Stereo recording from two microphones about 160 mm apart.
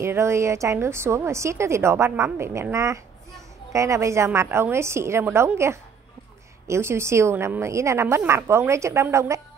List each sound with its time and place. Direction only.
0.0 s a woman's voice: 15° right (ahead or behind)